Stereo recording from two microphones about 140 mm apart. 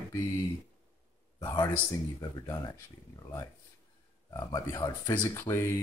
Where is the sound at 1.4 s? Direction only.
30° left (ahead or behind).